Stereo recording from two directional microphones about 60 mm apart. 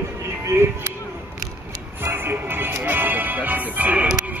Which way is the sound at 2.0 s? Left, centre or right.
Right.